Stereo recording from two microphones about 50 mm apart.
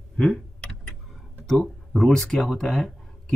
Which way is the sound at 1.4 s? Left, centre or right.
Centre.